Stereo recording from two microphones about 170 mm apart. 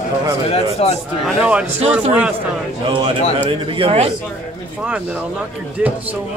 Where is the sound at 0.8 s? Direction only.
35° left (ahead or behind).